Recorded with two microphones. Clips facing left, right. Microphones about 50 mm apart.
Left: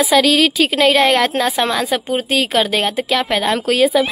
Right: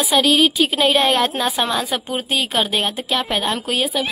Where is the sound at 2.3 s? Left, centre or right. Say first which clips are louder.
Left 3 dB; left.